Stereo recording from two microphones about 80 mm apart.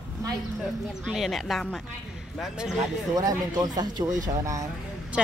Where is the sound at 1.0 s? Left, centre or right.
Centre.